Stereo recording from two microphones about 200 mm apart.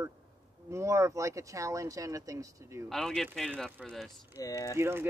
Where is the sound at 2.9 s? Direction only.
Centre (ahead or behind).